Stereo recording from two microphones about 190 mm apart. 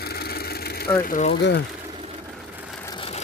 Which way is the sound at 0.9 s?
10° left (ahead or behind).